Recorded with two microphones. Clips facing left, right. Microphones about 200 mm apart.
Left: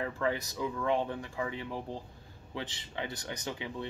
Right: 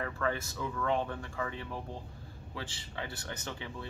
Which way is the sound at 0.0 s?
15° left (ahead or behind).